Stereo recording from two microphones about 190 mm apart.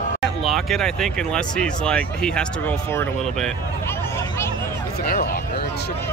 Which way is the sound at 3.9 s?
15° left (ahead or behind).